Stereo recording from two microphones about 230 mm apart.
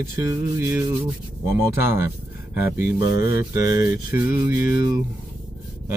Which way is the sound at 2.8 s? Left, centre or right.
Left.